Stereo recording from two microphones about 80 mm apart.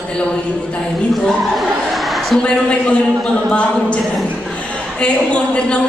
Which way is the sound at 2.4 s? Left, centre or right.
Centre.